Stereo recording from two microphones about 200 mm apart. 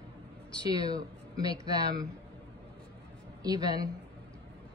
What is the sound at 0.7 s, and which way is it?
Speech, 20° right (ahead or behind).